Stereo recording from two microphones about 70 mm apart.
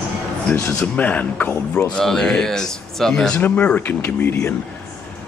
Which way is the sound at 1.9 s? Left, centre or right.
Centre.